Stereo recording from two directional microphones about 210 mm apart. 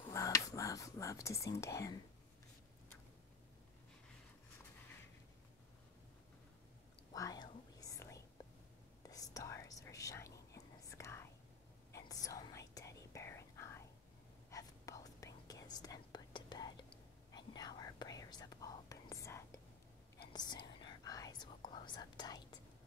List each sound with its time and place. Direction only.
0.0 s whispering: 15° left (ahead or behind)
7.2 s whispering: 20° left (ahead or behind)
20.8 s whispering: 15° left (ahead or behind)